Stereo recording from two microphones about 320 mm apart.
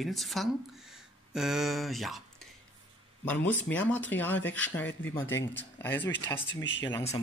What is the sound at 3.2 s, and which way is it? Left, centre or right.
Speech, centre.